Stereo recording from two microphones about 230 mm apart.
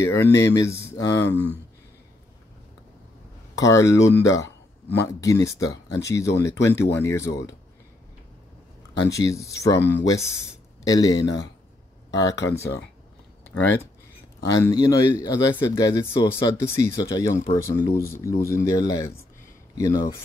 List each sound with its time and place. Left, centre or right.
0.0 s speech: centre
3.5 s speech: centre
9.1 s speech: centre